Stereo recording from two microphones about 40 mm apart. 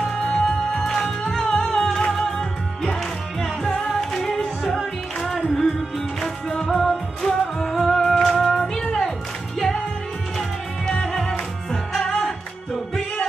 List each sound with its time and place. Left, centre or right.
0.0 s music: centre
6.6 s music: centre
8.4 s music: centre
10.9 s music: centre